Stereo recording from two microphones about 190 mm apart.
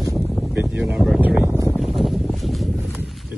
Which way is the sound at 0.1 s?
Centre (ahead or behind).